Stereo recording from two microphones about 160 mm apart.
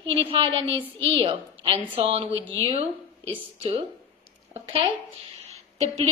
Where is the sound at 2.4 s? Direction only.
15° left (ahead or behind).